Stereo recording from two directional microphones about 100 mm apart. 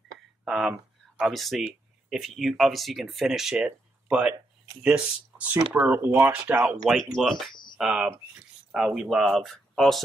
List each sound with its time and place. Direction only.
0.5 s speech: 5° right (ahead or behind)
3.6 s speech: 20° right (ahead or behind)
6.8 s speech: 5° right (ahead or behind)